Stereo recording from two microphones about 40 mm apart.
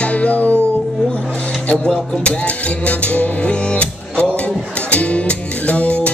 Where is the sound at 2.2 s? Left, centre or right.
Left.